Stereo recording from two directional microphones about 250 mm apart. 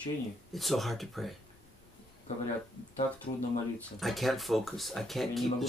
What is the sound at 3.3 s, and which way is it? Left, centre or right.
Speech, left.